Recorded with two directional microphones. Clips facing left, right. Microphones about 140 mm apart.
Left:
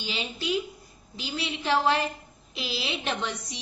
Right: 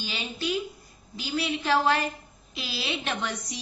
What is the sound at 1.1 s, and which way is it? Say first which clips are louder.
A woman's voice: right 4 dB; 25° left (ahead or behind).